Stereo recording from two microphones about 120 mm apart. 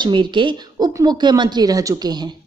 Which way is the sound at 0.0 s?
40° right (ahead or behind).